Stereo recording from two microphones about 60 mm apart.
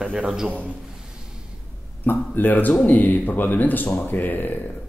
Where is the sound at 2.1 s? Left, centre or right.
Left.